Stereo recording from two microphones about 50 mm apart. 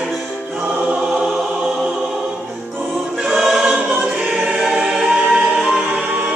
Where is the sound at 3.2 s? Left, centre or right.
Centre.